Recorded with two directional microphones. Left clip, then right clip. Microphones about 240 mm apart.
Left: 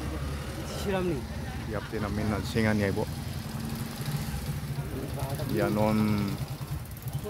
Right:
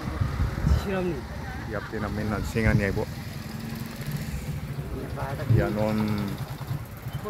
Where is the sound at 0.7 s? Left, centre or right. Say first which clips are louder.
Even; left.